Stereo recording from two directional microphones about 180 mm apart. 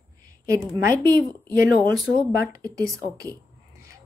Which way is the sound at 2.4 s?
20° right (ahead or behind).